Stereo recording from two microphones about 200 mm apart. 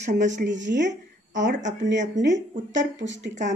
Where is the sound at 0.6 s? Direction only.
60° right (ahead or behind).